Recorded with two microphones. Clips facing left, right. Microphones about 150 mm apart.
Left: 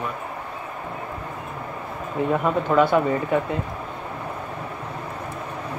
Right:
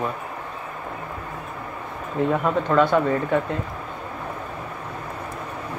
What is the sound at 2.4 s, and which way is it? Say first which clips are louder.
Speech: left 2 dB; 5° left (ahead or behind).